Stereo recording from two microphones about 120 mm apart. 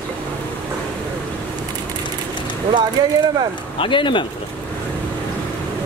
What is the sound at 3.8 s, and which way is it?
Speech, 45° left (ahead or behind).